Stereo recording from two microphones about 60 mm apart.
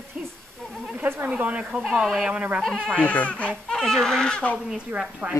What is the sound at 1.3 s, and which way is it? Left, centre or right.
Speech, right.